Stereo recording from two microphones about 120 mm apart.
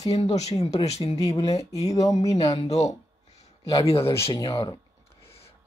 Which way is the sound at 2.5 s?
60° left (ahead or behind).